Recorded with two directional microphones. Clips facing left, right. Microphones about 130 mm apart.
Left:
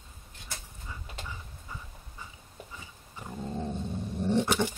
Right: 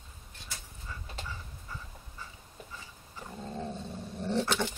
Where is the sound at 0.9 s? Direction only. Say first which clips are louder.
Even; 15° left (ahead or behind).